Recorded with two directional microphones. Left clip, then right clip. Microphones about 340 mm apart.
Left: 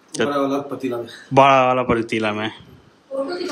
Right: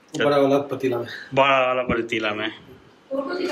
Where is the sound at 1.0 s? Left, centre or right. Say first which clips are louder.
Left 8 dB; centre.